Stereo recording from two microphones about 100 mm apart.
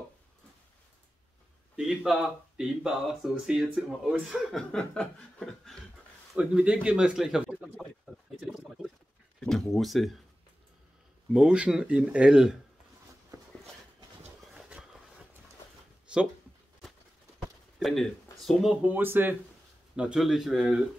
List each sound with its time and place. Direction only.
1.8 s speech: 5° right (ahead or behind)
4.7 s chuckle: 5° left (ahead or behind)
6.3 s speech: 10° right (ahead or behind)
9.4 s speech: centre (ahead or behind)
11.3 s speech: 10° right (ahead or behind)
13.3 s a sound: 35° right (ahead or behind)
14.5 s a sound: 10° right (ahead or behind)
16.1 s a sound: 10° right (ahead or behind)
17.8 s speech: 5° left (ahead or behind)
18.8 s speech: 20° right (ahead or behind)
20.0 s speech: 5° right (ahead or behind)